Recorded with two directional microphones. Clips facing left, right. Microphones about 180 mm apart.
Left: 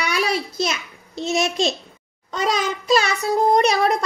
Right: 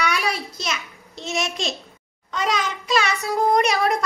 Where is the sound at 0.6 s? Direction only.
35° left (ahead or behind).